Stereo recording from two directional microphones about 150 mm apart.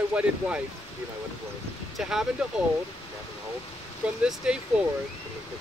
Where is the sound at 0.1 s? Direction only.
10° right (ahead or behind).